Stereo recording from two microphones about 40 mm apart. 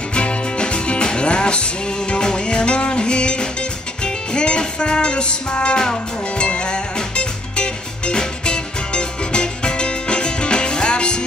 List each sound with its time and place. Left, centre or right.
0.1 s music: left